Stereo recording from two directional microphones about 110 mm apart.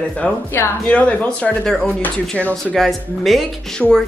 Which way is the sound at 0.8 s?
10° left (ahead or behind).